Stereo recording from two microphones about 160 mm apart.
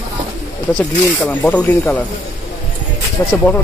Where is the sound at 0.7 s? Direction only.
5° left (ahead or behind).